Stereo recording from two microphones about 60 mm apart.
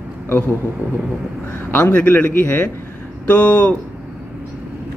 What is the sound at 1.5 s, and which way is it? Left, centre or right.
A man's voice, left.